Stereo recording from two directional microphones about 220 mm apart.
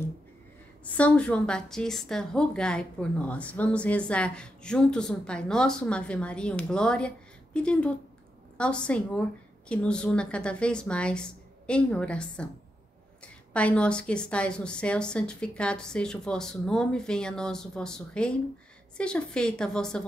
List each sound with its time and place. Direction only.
0.9 s a woman's voice: 5° left (ahead or behind)